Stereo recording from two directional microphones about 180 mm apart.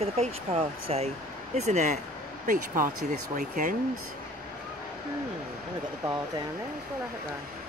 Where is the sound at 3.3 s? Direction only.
45° right (ahead or behind).